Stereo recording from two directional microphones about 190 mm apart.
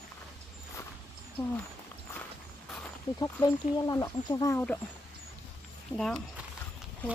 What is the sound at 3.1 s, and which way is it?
Speech, 20° left (ahead or behind).